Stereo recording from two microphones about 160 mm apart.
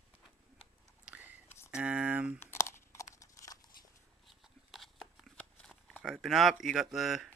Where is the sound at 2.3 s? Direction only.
15° left (ahead or behind).